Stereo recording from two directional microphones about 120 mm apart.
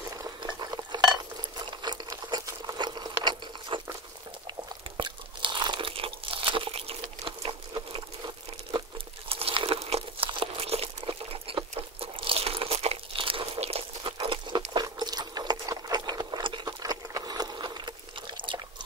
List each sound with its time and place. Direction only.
0.1 s stir: 30° right (ahead or behind)
1.8 s sewing machine: 35° right (ahead or behind)
4.5 s crunch: 40° right (ahead or behind)
9.3 s crumpling: 50° right (ahead or behind)
12.0 s crunch: 50° right (ahead or behind)
14.7 s patter: 35° right (ahead or behind)